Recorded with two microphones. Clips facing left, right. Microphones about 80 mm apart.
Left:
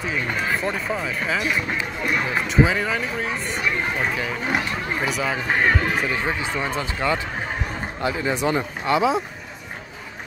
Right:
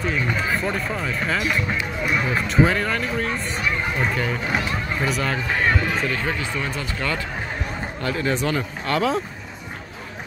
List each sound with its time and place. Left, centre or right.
0.0 s speech: centre